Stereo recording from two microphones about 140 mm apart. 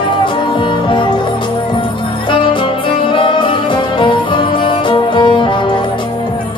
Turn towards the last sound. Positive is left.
turn(degrees=35)  # may be behind; listen again after turning